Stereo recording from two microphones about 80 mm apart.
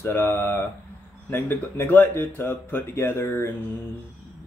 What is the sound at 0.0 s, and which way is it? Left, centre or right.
Speech, left.